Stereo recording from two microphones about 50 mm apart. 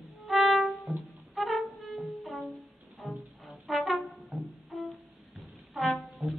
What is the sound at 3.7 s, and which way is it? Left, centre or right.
Brass instrument, centre.